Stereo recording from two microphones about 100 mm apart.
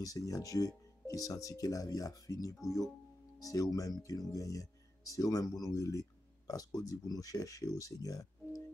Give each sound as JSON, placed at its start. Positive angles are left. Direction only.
{"t": 0.0, "sound": "speech", "side_deg": 35}